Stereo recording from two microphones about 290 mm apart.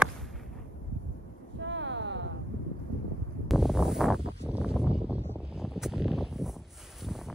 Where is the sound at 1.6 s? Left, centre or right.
Right.